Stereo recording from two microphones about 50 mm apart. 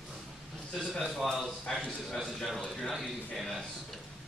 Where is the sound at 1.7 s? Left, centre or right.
Centre.